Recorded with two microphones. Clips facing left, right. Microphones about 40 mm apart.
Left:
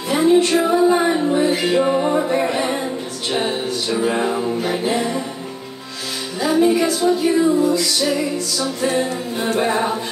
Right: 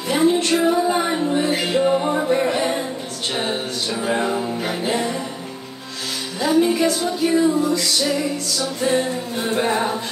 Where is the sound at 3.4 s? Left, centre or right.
Centre.